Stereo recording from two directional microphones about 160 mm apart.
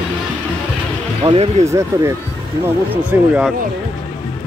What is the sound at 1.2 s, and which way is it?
Speech, 35° right (ahead or behind).